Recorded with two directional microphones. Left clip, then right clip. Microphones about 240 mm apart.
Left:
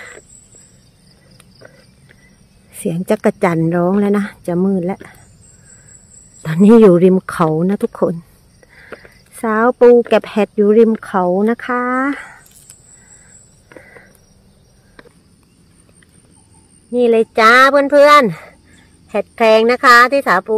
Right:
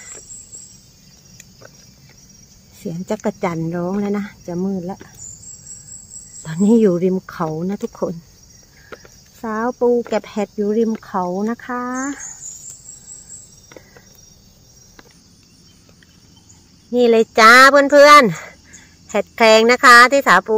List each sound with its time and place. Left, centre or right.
2.8 s speech: left
6.4 s speech: left
9.4 s speech: left
16.9 s speech: centre